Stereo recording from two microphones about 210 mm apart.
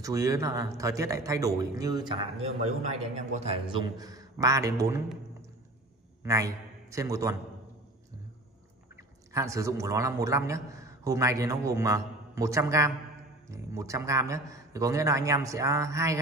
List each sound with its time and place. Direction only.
0.0 s a man's voice: 15° right (ahead or behind); by 3.8 s 30° right (ahead or behind)
3.9 s a man's voice: 15° right (ahead or behind)
6.2 s a man's voice: 15° right (ahead or behind)
9.3 s a man's voice: 15° right (ahead or behind)